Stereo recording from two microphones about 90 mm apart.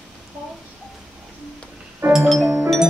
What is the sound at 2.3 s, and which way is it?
Music, 5° right (ahead or behind).